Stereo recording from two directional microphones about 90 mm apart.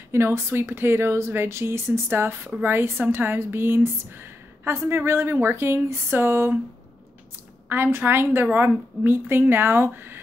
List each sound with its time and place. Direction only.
0.1 s a woman's voice: 30° right (ahead or behind)
7.7 s a woman's voice: 25° right (ahead or behind)